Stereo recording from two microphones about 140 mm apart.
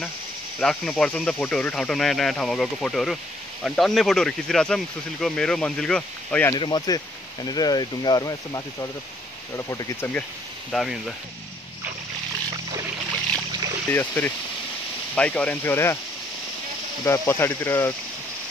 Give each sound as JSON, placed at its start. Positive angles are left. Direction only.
{"t": 0.6, "sound": "speech", "side_deg": 5}
{"t": 6.5, "sound": "speech", "side_deg": 30}
{"t": 10.7, "sound": "speech", "side_deg": 0}
{"t": 13.8, "sound": "speech", "side_deg": 15}
{"t": 17.0, "sound": "speech", "side_deg": 20}